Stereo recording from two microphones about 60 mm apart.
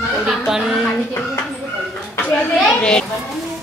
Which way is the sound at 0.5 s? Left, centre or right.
Centre.